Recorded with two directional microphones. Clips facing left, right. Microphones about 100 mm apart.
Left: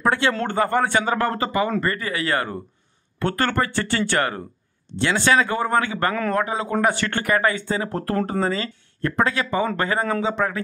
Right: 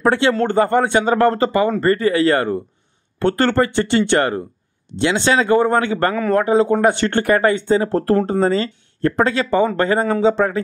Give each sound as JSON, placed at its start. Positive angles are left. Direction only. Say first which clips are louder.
{"t": 0.0, "sound": "speech", "louder": "right 5 dB", "side_deg": -30}